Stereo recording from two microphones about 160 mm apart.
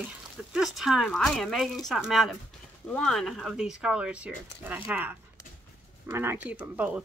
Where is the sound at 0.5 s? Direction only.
Centre (ahead or behind).